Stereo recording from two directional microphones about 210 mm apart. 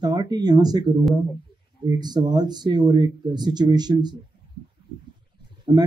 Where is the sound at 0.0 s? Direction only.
20° right (ahead or behind).